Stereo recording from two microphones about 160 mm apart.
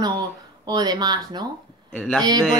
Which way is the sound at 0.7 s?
25° right (ahead or behind).